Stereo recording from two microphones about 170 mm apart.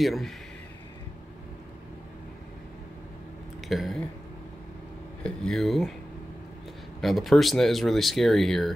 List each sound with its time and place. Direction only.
0.0 s speech: centre (ahead or behind)
3.6 s speech: centre (ahead or behind)
5.2 s speech: 5° left (ahead or behind)
7.0 s speech: centre (ahead or behind)